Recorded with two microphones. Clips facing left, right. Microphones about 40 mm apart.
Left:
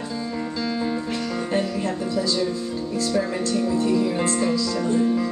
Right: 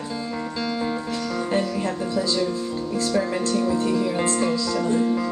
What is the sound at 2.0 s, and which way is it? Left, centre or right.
Speech, centre.